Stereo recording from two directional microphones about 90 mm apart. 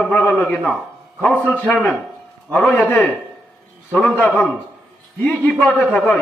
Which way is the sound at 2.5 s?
5° left (ahead or behind).